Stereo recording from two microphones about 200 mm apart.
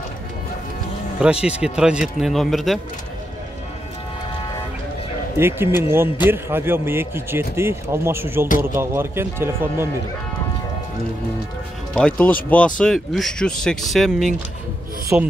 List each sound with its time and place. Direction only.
1.2 s speech: 5° right (ahead or behind)
5.4 s a man's voice: 10° right (ahead or behind)
11.9 s speech: 5° left (ahead or behind)
15.1 s a man's voice: 10° right (ahead or behind)